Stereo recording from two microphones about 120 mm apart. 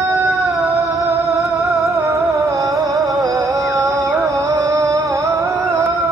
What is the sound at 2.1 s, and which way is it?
Music, 25° right (ahead or behind).